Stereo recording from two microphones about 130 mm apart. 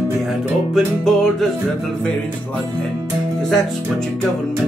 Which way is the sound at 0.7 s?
Centre (ahead or behind).